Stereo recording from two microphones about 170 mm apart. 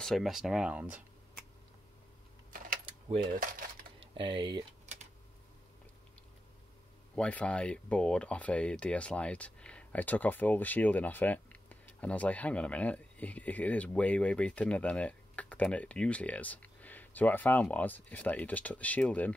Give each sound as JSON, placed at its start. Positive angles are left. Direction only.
{"t": 0.0, "sound": "speech", "side_deg": 0}
{"t": 2.8, "sound": "keys jangling", "side_deg": -30}
{"t": 4.0, "sound": "speech", "side_deg": -30}
{"t": 7.2, "sound": "speech", "side_deg": 5}